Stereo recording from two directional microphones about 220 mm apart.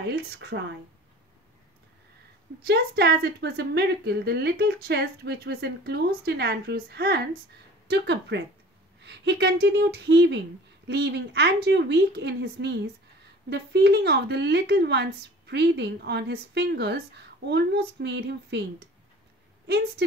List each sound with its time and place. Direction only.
0.0 s a woman's voice: 50° right (ahead or behind)
2.6 s a woman's voice: 45° right (ahead or behind)
19.6 s a woman's voice: 50° right (ahead or behind)